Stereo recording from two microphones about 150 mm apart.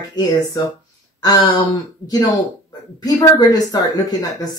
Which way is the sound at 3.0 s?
25° left (ahead or behind).